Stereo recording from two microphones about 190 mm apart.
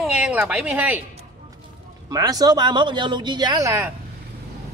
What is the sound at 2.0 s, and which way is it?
Speech, 20° right (ahead or behind).